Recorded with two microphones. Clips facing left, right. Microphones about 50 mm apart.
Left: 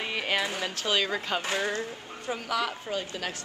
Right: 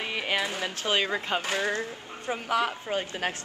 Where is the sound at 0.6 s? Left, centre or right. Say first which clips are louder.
Right 1 dB; right.